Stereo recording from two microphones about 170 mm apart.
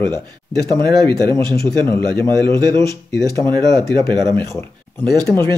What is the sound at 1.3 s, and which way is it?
Speech, 15° left (ahead or behind).